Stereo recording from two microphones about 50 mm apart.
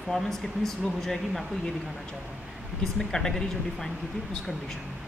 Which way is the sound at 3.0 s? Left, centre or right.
Centre.